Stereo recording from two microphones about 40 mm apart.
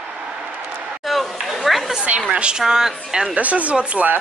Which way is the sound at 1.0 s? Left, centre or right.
Centre.